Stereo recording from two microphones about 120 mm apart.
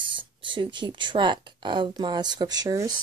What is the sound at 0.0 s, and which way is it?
Speech, 45° right (ahead or behind).